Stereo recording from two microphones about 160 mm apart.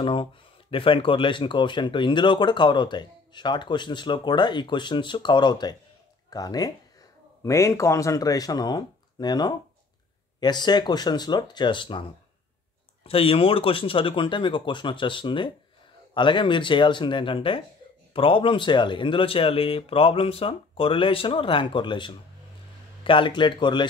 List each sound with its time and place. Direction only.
0.0 s speech: 30° left (ahead or behind)